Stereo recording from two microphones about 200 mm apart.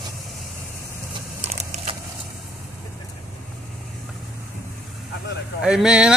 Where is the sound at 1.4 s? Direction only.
35° right (ahead or behind).